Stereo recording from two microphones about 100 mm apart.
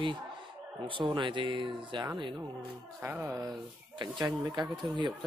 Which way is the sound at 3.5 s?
50° right (ahead or behind).